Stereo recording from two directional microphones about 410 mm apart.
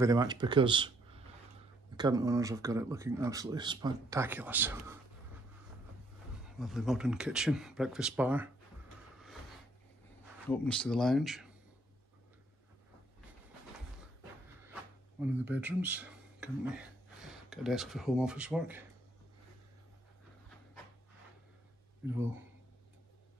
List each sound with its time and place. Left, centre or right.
0.0 s speech: centre
6.4 s speech: centre
10.5 s speech: centre
14.7 s a sound: centre
17.5 s speech: centre
22.1 s speech: centre